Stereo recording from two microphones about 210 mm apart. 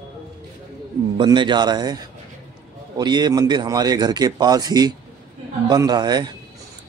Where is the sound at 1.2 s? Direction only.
20° right (ahead or behind).